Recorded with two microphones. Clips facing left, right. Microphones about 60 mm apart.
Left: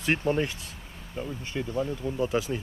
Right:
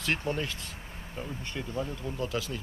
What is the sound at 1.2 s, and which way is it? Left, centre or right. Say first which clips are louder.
Speech: left 5 dB; centre.